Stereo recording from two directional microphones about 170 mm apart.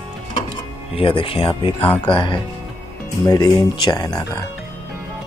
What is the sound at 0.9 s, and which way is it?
Speech, 30° left (ahead or behind).